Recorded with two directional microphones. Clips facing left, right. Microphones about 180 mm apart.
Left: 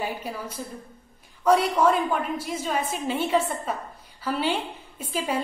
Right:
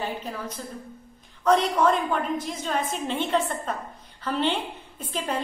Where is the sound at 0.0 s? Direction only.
10° left (ahead or behind).